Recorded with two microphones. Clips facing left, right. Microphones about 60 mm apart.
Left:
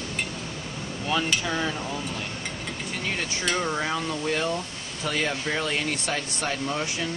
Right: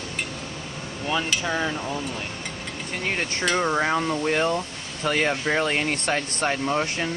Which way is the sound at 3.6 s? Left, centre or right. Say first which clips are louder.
Right 5 dB; right.